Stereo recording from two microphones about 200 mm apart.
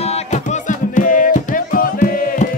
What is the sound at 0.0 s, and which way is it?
Music, 35° left (ahead or behind).